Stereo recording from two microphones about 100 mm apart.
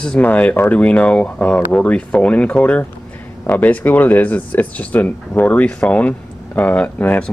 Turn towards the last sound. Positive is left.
turn(degrees=15)  # may be behind; listen again after turning